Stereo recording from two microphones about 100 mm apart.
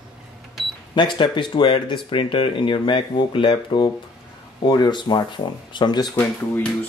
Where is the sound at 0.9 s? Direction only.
50° left (ahead or behind).